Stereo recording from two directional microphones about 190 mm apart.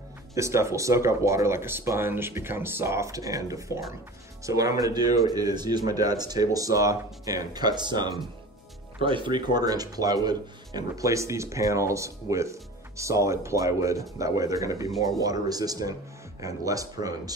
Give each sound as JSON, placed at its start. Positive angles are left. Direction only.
{"t": 0.3, "sound": "speech", "side_deg": -15}